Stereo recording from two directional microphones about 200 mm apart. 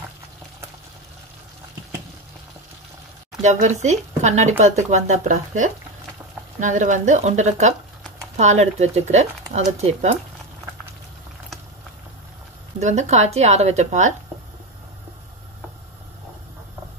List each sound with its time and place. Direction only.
3.4 s speech: 35° right (ahead or behind)
12.8 s speech: 35° right (ahead or behind)